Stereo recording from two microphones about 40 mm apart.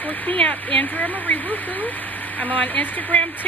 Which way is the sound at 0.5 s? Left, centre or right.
Left.